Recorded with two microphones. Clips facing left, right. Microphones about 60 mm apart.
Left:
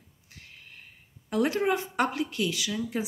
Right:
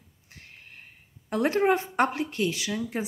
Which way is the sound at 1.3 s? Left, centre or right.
Right.